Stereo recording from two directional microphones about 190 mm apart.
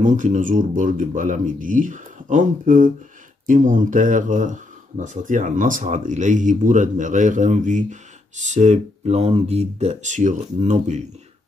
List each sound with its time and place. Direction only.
0.0 s speech: 40° right (ahead or behind)